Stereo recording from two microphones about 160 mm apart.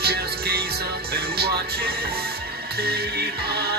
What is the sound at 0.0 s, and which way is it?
Music, 80° right.